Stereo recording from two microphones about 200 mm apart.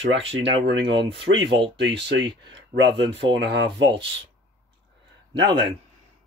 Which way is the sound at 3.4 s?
60° right (ahead or behind).